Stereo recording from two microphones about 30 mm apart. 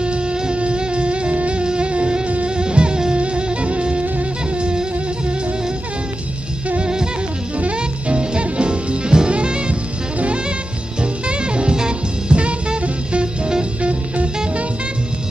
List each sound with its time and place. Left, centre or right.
0.0 s music: right
6.8 s music: right
10.1 s jazz: right
11.0 s music: right
12.4 s music: right